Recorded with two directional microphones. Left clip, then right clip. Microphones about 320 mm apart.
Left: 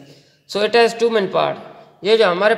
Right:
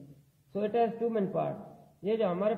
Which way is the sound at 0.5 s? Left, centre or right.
Left.